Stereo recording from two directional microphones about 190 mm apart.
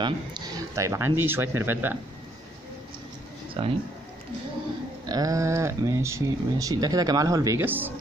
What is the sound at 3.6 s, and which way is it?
Speech, 30° right (ahead or behind).